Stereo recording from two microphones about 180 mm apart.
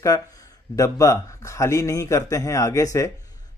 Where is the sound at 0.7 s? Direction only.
20° left (ahead or behind).